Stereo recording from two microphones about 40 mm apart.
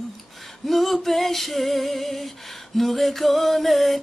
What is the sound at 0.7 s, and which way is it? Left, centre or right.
Female singing, centre.